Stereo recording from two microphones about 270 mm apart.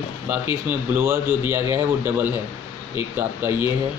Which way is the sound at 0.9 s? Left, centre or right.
Centre.